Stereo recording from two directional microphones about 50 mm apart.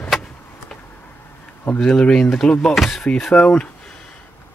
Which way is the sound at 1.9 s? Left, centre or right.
Centre.